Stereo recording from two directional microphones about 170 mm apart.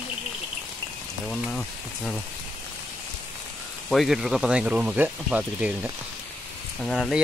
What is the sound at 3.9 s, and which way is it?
Speech, centre (ahead or behind).